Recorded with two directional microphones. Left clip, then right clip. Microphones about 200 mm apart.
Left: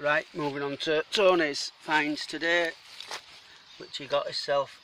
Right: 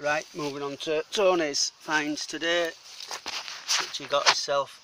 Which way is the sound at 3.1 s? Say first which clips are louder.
Right 1 dB; 25° right (ahead or behind).